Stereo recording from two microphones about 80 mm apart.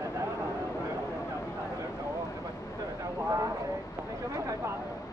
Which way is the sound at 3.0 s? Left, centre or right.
Right.